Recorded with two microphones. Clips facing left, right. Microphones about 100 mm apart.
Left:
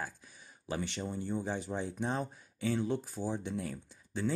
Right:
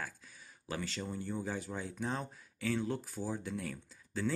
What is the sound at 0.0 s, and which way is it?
Speech, 25° left (ahead or behind).